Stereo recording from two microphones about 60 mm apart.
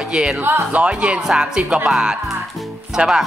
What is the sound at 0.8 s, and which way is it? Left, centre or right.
Speech, centre.